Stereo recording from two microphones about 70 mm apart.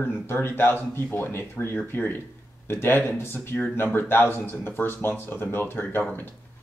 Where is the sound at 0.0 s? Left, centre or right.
Left.